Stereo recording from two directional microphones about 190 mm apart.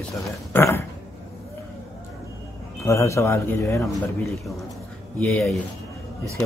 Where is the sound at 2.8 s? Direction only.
15° left (ahead or behind).